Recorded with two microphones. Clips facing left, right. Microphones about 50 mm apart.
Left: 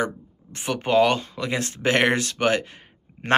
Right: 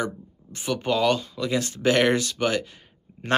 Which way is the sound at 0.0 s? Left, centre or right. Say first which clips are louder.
Left 3 dB; left.